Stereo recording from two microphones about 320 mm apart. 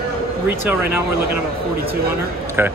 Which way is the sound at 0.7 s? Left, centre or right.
Centre.